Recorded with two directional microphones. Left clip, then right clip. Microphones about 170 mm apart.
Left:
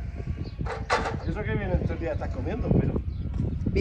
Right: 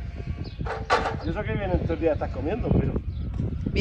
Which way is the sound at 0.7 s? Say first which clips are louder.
Right 3 dB; centre (ahead or behind).